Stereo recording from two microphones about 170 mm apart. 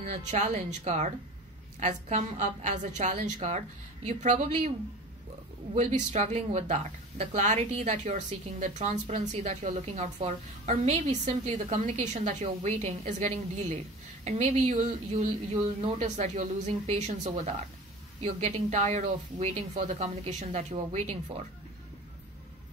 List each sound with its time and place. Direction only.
0.0 s speech: 45° right (ahead or behind)
5.8 s speech: 40° right (ahead or behind)